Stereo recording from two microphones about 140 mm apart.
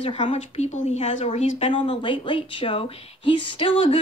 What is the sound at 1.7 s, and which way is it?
Speech, 35° left (ahead or behind).